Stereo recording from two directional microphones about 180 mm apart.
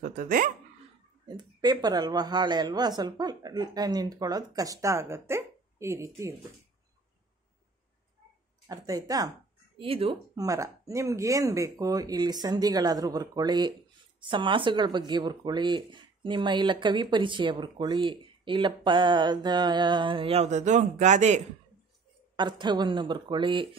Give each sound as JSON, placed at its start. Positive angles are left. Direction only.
{"t": 0.0, "sound": "speech", "side_deg": -50}
{"t": 1.2, "sound": "a woman's voice", "side_deg": -25}
{"t": 8.6, "sound": "a woman's voice", "side_deg": -20}
{"t": 9.8, "sound": "speech", "side_deg": -30}
{"t": 10.3, "sound": "a woman's voice", "side_deg": -20}
{"t": 22.4, "sound": "a woman's voice", "side_deg": -25}